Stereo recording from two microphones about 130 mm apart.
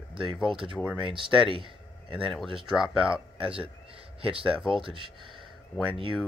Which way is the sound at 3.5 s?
45° right (ahead or behind).